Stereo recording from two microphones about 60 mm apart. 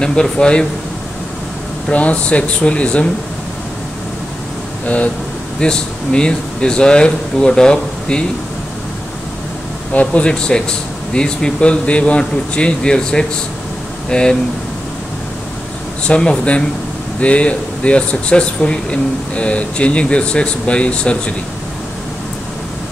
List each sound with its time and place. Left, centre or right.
0.0 s speech: centre
1.9 s speech: left
4.8 s speech: left
5.6 s speech: centre
9.9 s speech: centre
16.1 s speech: centre